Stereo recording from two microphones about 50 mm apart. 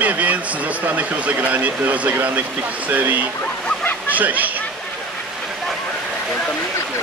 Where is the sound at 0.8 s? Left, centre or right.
Right.